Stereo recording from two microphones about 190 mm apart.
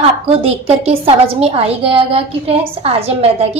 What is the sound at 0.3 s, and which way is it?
A woman's voice, 30° right (ahead or behind).